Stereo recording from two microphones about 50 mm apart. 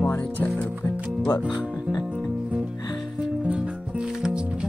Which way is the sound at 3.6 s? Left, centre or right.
Centre.